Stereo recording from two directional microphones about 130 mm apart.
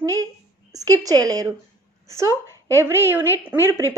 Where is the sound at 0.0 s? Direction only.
25° right (ahead or behind).